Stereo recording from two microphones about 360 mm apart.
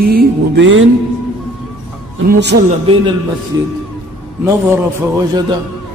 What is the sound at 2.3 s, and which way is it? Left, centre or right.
Music, right.